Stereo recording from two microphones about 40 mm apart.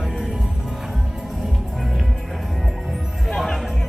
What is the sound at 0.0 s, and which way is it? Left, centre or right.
Music, centre.